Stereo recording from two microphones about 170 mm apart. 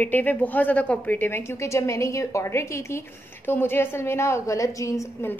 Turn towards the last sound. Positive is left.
turn(degrees=15)  # may be behind; listen again after turning